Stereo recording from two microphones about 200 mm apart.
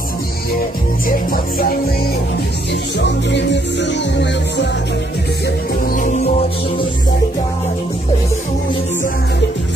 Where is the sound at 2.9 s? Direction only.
60° left (ahead or behind).